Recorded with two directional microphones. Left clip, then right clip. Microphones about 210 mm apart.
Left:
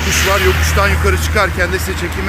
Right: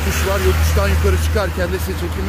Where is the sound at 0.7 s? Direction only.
20° right (ahead or behind).